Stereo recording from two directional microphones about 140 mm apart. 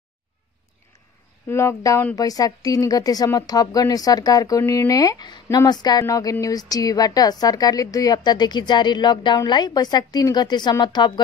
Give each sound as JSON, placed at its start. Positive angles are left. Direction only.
{"t": 1.5, "sound": "a woman's voice", "side_deg": 20}